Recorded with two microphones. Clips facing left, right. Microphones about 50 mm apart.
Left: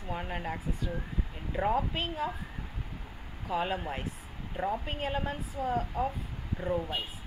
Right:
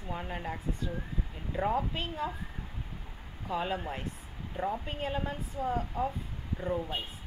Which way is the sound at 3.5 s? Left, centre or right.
Centre.